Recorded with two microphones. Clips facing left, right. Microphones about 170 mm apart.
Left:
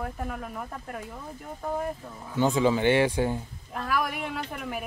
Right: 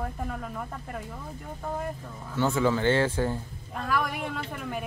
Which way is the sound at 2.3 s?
15° left (ahead or behind).